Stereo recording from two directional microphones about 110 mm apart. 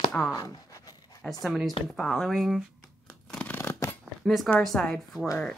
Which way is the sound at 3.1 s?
10° left (ahead or behind).